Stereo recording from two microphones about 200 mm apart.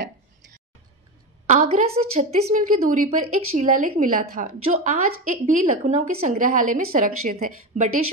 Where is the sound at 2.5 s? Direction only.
45° right (ahead or behind).